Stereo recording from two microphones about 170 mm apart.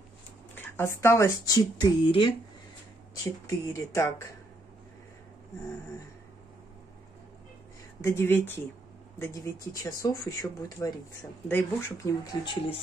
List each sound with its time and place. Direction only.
0.6 s speech: 15° left (ahead or behind)
3.4 s speech: 20° left (ahead or behind)
8.0 s speech: 15° left (ahead or behind)
12.4 s speech: 35° left (ahead or behind)